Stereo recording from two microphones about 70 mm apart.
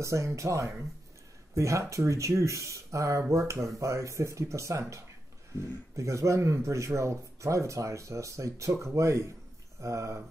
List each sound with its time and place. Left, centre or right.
0.0 s speech: right